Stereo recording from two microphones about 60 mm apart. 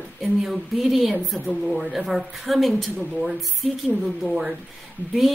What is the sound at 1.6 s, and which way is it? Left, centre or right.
Speech, centre.